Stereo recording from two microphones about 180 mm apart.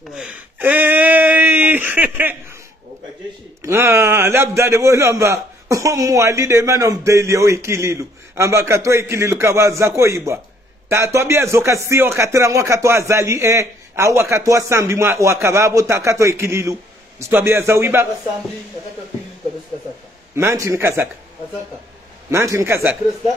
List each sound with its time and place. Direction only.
0.1 s a sound: 5° right (ahead or behind)
3.6 s a man's voice: 15° right (ahead or behind)
20.3 s a man's voice: 15° right (ahead or behind)
22.3 s a man's voice: 15° right (ahead or behind)